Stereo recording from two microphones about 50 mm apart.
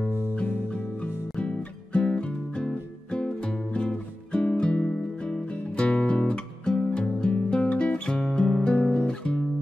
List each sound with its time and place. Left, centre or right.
1.4 s music: left
8.8 s guitar: left